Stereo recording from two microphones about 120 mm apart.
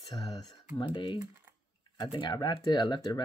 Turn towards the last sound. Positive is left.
turn(degrees=40)  # may be behind; listen again after turning